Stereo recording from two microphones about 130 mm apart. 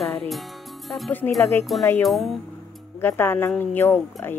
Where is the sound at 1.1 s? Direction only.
15° left (ahead or behind).